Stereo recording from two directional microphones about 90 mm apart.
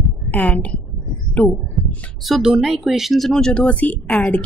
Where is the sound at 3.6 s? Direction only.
20° left (ahead or behind).